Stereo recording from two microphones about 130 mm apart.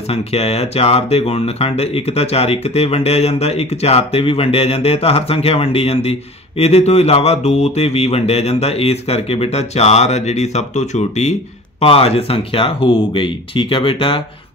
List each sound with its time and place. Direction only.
0.1 s speech: 50° left (ahead or behind)
11.8 s speech: 50° left (ahead or behind)